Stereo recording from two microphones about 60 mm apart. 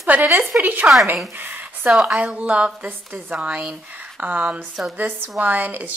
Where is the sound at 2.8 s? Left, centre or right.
Right.